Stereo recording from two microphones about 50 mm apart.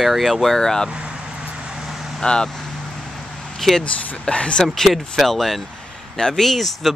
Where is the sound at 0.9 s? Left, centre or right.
Centre.